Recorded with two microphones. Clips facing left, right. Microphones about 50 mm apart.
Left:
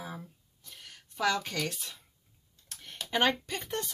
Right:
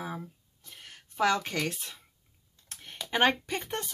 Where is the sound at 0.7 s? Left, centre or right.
Right.